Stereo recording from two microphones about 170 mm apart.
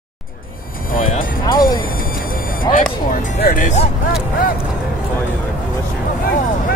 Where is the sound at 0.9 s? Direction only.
50° left (ahead or behind).